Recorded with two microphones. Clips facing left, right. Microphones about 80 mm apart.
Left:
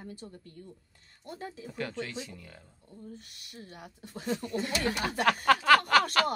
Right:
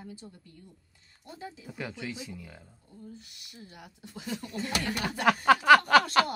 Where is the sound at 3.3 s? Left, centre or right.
Left.